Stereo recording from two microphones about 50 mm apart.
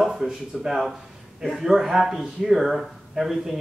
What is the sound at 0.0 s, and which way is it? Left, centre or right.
Speech, centre.